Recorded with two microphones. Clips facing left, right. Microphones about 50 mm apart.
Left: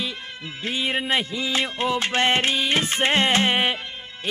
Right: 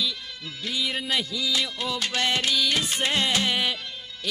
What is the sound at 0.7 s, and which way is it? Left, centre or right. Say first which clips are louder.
Music: left 4 dB; left.